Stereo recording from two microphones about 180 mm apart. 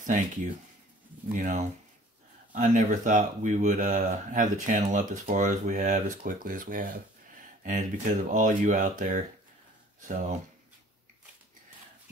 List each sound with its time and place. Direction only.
1.3 s speech: 45° right (ahead or behind)